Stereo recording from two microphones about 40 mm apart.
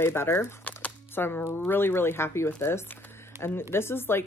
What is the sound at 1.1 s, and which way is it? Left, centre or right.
Speech, left.